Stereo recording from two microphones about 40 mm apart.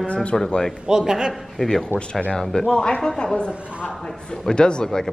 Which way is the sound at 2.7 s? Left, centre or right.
Left.